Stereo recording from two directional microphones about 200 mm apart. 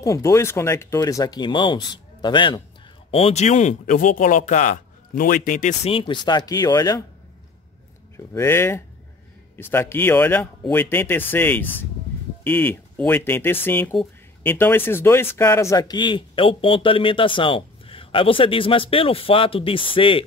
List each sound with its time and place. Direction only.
0.0 s speech: 15° left (ahead or behind); by 5.8 s 40° left (ahead or behind)
5.9 s speech: 25° left (ahead or behind)
8.3 s speech: 15° left (ahead or behind)